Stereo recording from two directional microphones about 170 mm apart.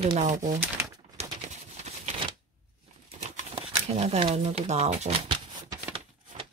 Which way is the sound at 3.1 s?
40° right (ahead or behind).